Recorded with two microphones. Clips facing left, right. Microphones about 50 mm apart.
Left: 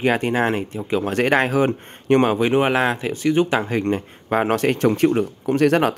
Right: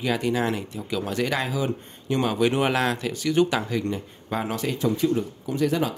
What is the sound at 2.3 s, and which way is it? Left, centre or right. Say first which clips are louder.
Speech: left 4 dB; left.